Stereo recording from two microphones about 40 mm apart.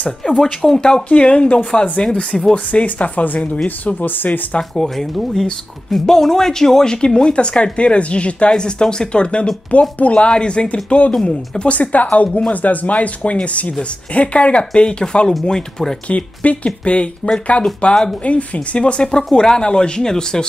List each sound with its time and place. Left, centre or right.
0.4 s speech: centre
1.0 s speech: left
2.5 s speech: left
3.6 s speech: left
4.7 s speech: centre
16.1 s speech: left; by 20.4 s centre